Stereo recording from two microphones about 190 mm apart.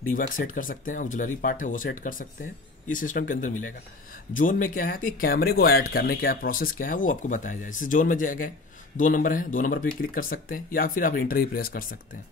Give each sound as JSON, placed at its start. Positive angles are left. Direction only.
{"t": 0.0, "sound": "speech", "side_deg": 45}